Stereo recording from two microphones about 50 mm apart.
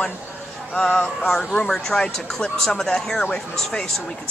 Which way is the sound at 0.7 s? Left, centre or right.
Left.